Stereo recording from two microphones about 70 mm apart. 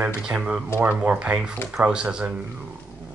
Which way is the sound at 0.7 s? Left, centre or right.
Right.